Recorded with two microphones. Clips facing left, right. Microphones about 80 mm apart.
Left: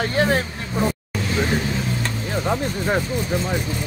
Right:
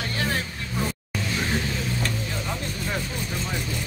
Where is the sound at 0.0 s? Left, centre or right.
Left.